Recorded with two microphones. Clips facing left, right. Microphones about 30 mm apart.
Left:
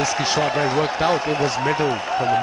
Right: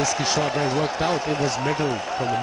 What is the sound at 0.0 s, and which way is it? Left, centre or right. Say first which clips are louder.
Speech: left 2 dB; centre.